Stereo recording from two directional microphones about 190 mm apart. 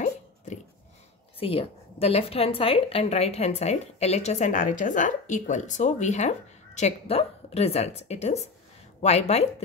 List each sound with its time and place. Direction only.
1.4 s a woman's voice: 30° left (ahead or behind)